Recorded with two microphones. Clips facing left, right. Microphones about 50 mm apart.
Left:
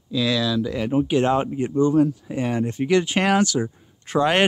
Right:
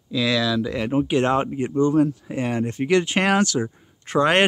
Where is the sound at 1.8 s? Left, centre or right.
Right.